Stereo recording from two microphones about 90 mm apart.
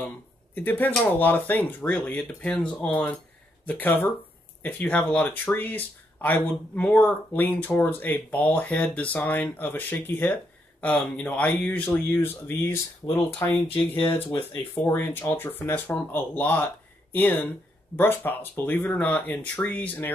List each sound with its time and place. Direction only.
0.6 s speech: 20° left (ahead or behind)
3.6 s speech: 20° left (ahead or behind)
13.4 s speech: 30° left (ahead or behind); by 20.1 s 15° left (ahead or behind)